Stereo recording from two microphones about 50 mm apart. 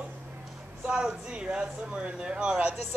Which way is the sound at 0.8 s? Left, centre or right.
Centre.